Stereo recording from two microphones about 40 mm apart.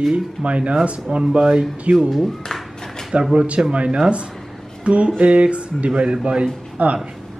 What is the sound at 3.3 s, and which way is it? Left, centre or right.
Speech, right.